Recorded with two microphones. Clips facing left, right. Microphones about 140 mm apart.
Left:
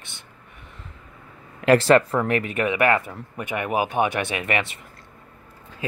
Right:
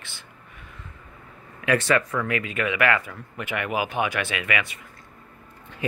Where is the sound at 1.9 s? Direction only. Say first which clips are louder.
Left 6 dB; 30° left (ahead or behind).